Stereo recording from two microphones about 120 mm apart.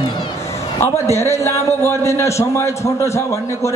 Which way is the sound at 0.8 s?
25° left (ahead or behind).